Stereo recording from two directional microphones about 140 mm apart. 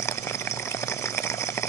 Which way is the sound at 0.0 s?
20° left (ahead or behind).